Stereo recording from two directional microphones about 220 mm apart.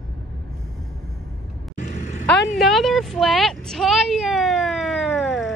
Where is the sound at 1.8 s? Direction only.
35° left (ahead or behind).